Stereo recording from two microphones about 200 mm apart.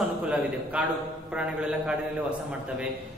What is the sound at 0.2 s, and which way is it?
A man's voice, 5° right (ahead or behind).